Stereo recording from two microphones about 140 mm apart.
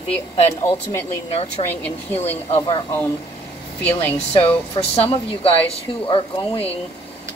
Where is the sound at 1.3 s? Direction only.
45° left (ahead or behind).